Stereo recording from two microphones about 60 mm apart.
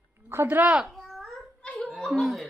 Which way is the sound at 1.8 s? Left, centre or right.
Centre.